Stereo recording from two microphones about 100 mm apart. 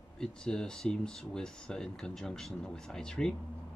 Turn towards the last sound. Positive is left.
turn(degrees=5)  # may be behind; listen again after turning